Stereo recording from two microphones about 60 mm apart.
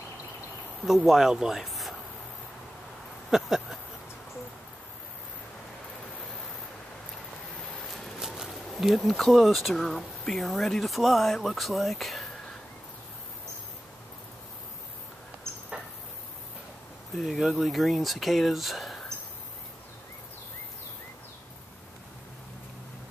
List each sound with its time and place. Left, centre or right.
0.8 s speech: centre
3.3 s speech: centre
8.2 s a sound: centre
8.5 s speech: centre
15.5 s a sound: right
17.1 s speech: centre